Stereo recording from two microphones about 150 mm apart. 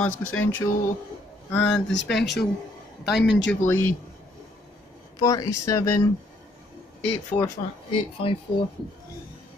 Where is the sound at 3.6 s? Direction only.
15° left (ahead or behind).